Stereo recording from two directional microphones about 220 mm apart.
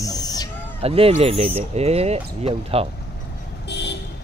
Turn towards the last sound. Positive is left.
turn(degrees=50)  # may be behind; listen again after turning